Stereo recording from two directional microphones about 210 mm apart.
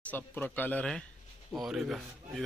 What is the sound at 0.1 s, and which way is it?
Speech, 10° left (ahead or behind).